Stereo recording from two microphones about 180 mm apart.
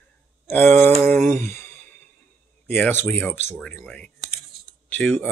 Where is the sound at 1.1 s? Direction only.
10° left (ahead or behind).